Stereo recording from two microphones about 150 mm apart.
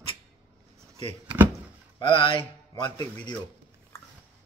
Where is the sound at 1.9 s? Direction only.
35° left (ahead or behind).